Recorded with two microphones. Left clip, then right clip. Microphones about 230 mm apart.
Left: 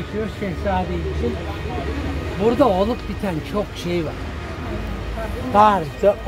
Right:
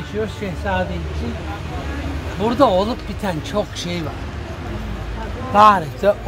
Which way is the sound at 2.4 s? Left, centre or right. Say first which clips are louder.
Right 1 dB; right.